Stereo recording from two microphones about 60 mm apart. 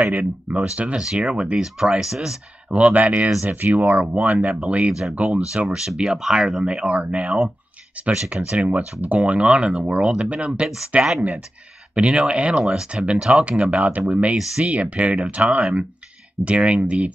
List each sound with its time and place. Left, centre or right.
0.0 s speech: right; by 2.3 s centre
2.7 s speech: right
4.0 s speech: centre
4.3 s speech: right; by 13.0 s centre
13.2 s speech: centre